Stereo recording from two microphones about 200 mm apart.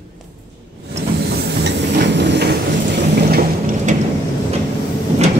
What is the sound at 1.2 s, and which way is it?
Train, 55° right (ahead or behind).